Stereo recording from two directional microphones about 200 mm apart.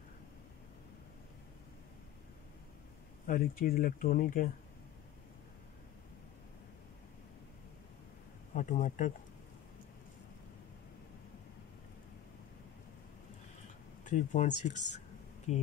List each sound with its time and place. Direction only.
3.3 s speech: 45° left (ahead or behind)
8.5 s speech: 40° left (ahead or behind)
14.0 s speech: 35° left (ahead or behind)